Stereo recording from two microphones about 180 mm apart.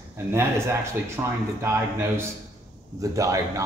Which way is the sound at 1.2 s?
15° right (ahead or behind).